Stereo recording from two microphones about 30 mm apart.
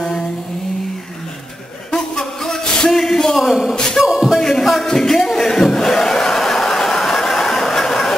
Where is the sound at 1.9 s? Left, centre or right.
Left.